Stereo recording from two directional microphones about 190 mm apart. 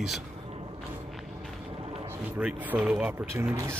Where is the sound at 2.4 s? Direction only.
5° right (ahead or behind).